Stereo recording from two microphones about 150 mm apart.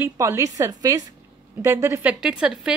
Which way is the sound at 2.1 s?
5° right (ahead or behind).